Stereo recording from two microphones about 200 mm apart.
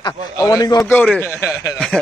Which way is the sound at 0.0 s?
15° left (ahead or behind).